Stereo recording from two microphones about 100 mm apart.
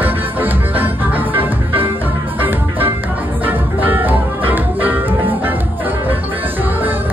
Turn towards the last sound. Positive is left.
turn(degrees=-20)  # may be behind; listen again after turning